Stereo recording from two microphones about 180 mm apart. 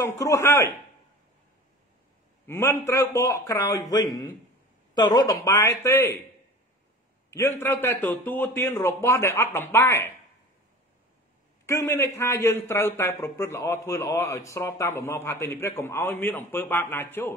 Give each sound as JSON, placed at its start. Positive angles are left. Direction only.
{"t": 0.2, "sound": "a man's voice", "side_deg": 15}
{"t": 2.4, "sound": "a man's voice", "side_deg": 15}
{"t": 7.2, "sound": "a man's voice", "side_deg": 15}
{"t": 11.6, "sound": "a man's voice", "side_deg": 15}